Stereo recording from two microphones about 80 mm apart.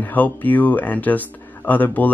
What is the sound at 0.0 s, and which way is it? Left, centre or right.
Speech, left.